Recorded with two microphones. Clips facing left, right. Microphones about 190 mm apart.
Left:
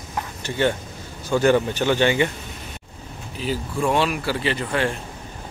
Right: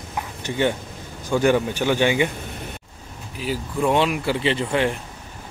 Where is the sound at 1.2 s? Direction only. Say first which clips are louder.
Left 1 dB; 15° right (ahead or behind).